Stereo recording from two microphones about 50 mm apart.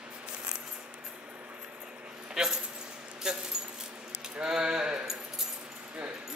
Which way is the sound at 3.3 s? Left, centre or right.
Centre.